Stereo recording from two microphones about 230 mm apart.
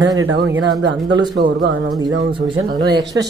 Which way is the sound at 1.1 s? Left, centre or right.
Centre.